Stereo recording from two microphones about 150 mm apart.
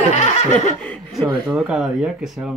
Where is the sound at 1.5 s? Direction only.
5° right (ahead or behind).